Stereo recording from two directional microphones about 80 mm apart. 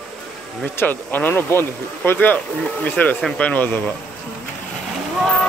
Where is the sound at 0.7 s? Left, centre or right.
Left.